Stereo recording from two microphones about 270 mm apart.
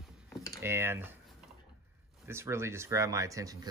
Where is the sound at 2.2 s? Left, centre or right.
Centre.